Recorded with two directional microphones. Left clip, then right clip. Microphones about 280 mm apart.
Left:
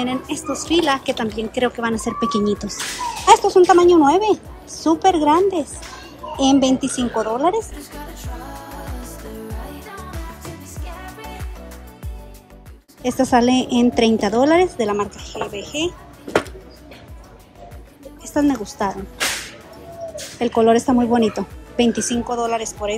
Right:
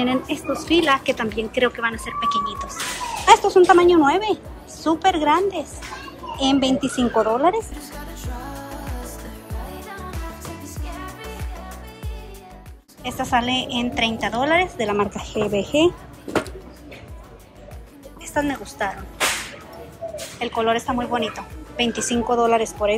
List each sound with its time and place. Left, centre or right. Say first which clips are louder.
0.0 s speech: right 1 dB; centre
2.1 s a woman's voice: left 1 dB; centre
13.0 s a woman's voice: left 5 dB; left; by 15.9 s centre
16.3 s a sound: left 4 dB; centre
18.2 s speech: left 4 dB; centre
20.3 s speech: left 6 dB; centre